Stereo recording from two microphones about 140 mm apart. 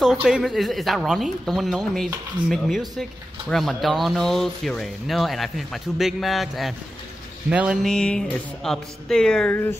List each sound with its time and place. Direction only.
0.0 s speech: 5° right (ahead or behind); by 9.8 s 15° left (ahead or behind)